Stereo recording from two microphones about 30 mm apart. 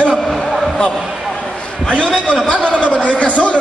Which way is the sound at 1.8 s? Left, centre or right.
Left.